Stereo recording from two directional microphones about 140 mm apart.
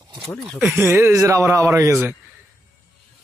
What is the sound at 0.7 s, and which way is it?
Speech, 15° right (ahead or behind).